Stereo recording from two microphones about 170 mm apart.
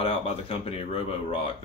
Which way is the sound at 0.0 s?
35° left (ahead or behind).